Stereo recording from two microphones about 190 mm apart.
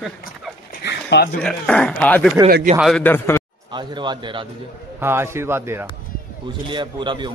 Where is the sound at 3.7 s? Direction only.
25° right (ahead or behind).